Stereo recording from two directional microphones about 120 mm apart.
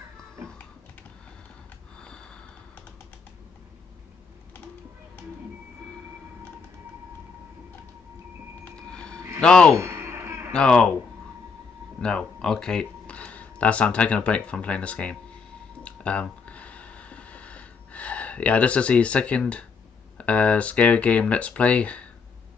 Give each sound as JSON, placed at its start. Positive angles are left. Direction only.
{"t": 2.0, "sound": "sniff", "side_deg": 5}
{"t": 8.6, "sound": "train", "side_deg": 10}
{"t": 9.4, "sound": "speech", "side_deg": 5}
{"t": 9.8, "sound": "a sound", "side_deg": -25}
{"t": 10.5, "sound": "speech", "side_deg": 5}
{"t": 12.0, "sound": "speech", "side_deg": 5}
{"t": 15.8, "sound": "a sound", "side_deg": 10}
{"t": 20.2, "sound": "speech", "side_deg": 10}